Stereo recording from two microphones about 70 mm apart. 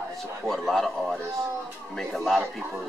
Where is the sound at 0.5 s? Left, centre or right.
Centre.